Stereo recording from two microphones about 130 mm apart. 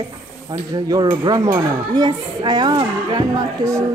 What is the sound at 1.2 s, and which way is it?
Speech, 30° right (ahead or behind).